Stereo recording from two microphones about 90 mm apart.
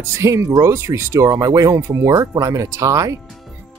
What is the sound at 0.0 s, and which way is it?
Speech, 30° right (ahead or behind).